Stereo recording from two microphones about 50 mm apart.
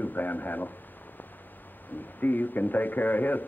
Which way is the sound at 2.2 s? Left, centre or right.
Left.